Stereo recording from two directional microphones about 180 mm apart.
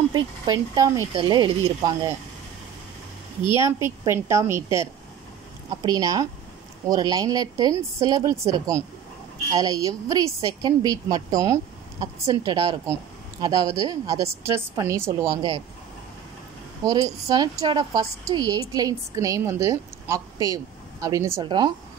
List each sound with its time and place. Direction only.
0.1 s a woman's voice: 20° right (ahead or behind)
3.5 s a woman's voice: 15° right (ahead or behind)
16.8 s a woman's voice: 20° right (ahead or behind)